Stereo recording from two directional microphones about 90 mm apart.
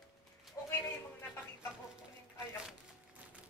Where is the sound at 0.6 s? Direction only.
35° left (ahead or behind).